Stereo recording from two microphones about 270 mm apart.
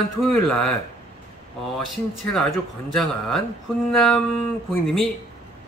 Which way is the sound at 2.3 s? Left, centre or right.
Centre.